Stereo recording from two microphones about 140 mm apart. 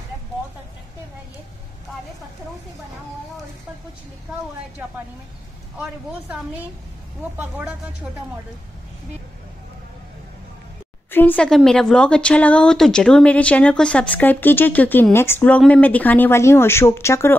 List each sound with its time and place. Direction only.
5.8 s speech: 10° right (ahead or behind)
11.1 s speech: 15° left (ahead or behind)